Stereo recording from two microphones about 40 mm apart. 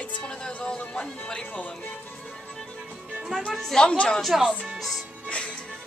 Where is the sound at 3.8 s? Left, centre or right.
Left.